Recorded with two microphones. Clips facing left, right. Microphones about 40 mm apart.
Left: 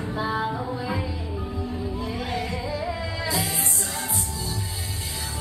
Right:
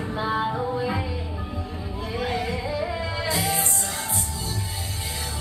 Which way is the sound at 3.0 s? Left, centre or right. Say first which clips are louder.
Right 2 dB; right.